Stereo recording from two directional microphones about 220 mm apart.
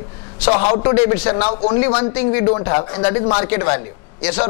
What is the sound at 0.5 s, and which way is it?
A man's voice, 30° left (ahead or behind).